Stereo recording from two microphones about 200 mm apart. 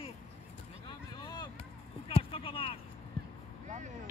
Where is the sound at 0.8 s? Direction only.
20° left (ahead or behind).